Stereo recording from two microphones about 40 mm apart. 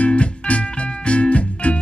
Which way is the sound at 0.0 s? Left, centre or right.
Left.